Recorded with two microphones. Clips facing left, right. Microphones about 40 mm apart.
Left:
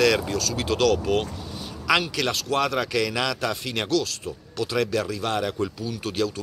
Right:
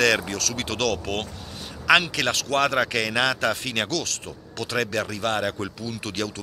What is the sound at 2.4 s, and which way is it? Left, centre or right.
Speech, right.